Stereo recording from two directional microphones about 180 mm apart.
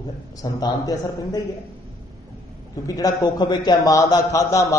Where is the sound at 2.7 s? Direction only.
20° left (ahead or behind).